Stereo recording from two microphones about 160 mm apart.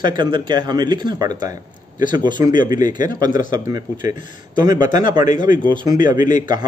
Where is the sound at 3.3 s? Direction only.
55° left (ahead or behind).